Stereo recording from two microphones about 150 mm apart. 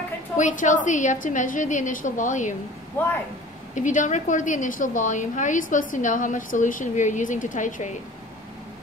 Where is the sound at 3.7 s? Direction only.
55° left (ahead or behind).